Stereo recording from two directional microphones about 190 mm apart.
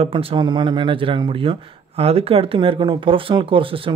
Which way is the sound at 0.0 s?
30° right (ahead or behind).